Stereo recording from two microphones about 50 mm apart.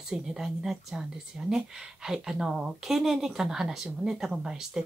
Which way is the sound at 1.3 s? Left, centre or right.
Centre.